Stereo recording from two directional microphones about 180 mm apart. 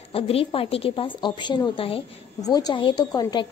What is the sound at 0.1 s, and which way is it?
A woman's voice, 30° left (ahead or behind).